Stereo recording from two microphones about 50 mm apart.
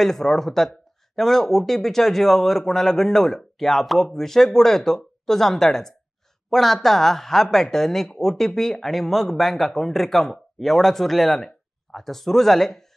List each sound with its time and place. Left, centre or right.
0.0 s speech: centre